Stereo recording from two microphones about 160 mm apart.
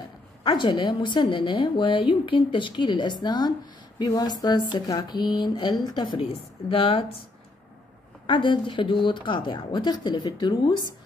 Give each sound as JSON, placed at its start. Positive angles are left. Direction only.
{"t": 0.4, "sound": "a woman's voice", "side_deg": 25}
{"t": 8.3, "sound": "a woman's voice", "side_deg": 30}